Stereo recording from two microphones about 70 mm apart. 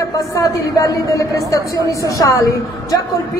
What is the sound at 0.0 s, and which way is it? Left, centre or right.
A man's voice, left.